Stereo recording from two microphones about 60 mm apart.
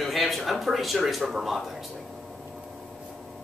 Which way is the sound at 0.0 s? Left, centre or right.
Centre.